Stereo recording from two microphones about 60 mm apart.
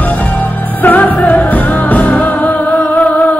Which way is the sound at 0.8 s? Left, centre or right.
Left.